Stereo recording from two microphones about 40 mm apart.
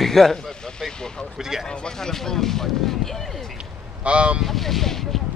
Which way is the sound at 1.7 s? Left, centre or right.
Centre.